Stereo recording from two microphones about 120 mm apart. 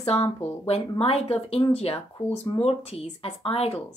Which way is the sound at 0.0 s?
60° left (ahead or behind).